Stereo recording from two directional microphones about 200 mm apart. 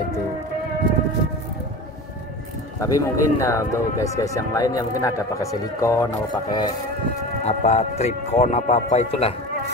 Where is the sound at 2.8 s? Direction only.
15° left (ahead or behind).